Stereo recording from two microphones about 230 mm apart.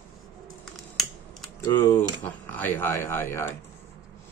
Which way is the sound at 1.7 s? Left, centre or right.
Centre.